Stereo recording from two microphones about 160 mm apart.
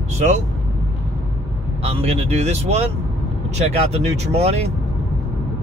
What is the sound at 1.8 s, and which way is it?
Speech, 40° right (ahead or behind).